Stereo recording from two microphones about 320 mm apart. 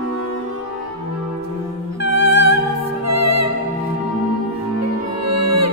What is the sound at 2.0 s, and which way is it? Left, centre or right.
Music, right.